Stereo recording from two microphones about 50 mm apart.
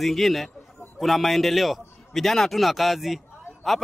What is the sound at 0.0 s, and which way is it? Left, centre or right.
Speech, centre.